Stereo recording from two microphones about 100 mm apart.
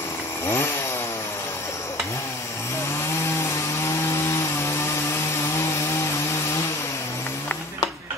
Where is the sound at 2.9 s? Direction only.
30° left (ahead or behind).